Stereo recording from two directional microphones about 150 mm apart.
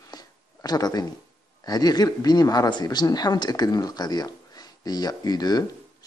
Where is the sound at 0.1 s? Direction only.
25° left (ahead or behind).